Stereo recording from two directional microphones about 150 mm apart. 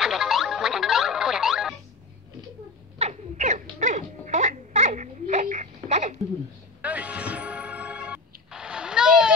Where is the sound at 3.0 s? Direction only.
50° right (ahead or behind).